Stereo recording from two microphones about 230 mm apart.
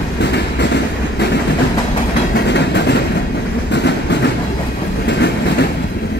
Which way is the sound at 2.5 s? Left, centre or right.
Left.